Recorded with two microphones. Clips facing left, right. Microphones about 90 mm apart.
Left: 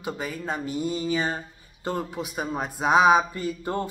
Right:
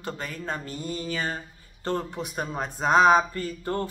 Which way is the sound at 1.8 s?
5° left (ahead or behind).